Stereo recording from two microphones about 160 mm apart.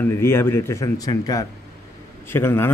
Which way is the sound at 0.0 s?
15° left (ahead or behind).